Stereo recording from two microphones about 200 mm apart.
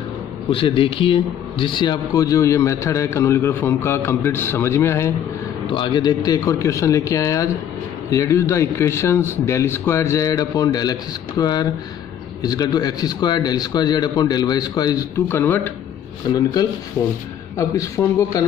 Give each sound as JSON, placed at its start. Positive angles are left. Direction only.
{"t": 0.5, "sound": "a man's voice", "side_deg": 25}
{"t": 17.6, "sound": "a man's voice", "side_deg": 15}